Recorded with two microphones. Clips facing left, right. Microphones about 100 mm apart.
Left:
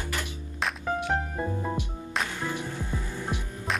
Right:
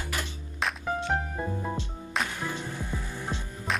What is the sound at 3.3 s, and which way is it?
Hum, 15° left (ahead or behind).